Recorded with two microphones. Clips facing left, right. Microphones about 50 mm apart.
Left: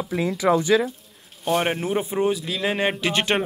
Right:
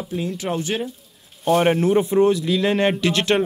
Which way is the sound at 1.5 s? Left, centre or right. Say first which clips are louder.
Right 6 dB; centre.